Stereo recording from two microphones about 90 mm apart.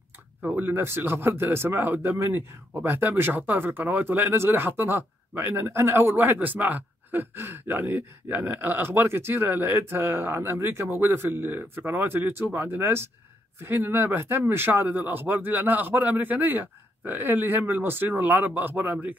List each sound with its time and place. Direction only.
0.4 s speech: 15° right (ahead or behind)